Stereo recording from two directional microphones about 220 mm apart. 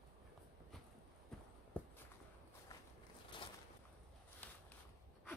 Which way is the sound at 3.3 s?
20° left (ahead or behind).